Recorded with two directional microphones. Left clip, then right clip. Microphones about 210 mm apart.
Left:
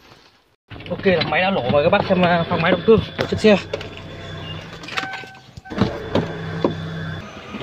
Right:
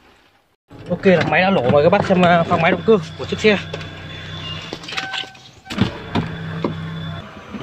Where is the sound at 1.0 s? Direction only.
30° right (ahead or behind).